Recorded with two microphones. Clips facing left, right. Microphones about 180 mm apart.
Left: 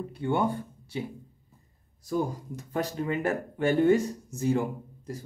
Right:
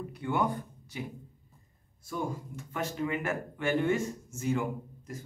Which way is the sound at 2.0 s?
40° left (ahead or behind).